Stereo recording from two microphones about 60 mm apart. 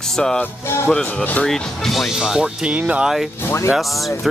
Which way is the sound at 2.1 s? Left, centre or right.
Centre.